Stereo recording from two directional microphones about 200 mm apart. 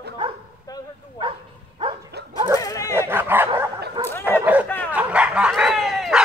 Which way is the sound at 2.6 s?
15° left (ahead or behind).